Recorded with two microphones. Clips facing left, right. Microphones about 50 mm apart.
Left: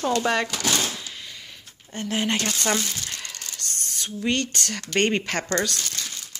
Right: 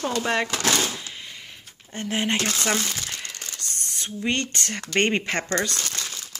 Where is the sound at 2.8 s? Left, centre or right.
Right.